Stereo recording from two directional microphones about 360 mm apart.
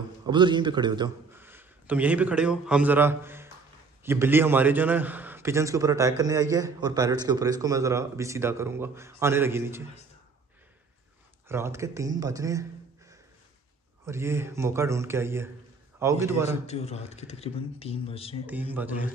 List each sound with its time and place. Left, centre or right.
0.3 s a man's voice: centre
11.4 s a man's voice: centre
14.0 s a man's voice: centre
16.4 s speech: centre
18.5 s a man's voice: centre